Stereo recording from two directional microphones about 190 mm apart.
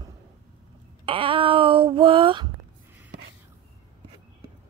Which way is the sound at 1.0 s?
25° right (ahead or behind).